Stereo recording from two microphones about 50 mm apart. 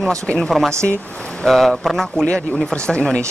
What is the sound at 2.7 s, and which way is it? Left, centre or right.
Speech, centre.